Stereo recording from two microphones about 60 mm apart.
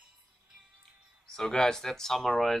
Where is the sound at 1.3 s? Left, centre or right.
Centre.